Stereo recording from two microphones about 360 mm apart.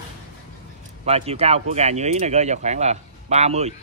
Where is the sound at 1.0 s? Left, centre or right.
Centre.